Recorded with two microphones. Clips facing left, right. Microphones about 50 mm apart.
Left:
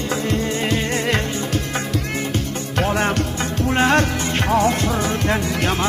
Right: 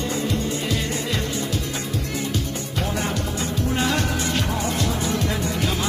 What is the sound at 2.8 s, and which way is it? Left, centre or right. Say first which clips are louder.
Music: left 7 dB; left.